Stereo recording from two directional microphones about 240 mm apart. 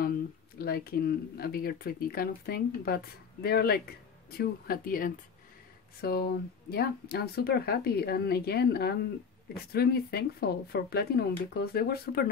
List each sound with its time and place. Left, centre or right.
0.6 s speech: left